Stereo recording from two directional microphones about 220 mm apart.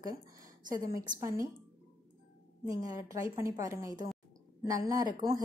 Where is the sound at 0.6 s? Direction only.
35° right (ahead or behind).